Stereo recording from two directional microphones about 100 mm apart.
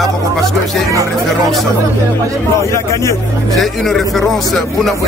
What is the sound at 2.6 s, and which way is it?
Speech, 30° left (ahead or behind).